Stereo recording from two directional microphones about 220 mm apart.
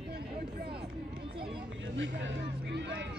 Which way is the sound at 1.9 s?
55° right (ahead or behind).